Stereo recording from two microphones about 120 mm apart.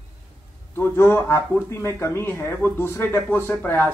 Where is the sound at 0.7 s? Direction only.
20° left (ahead or behind).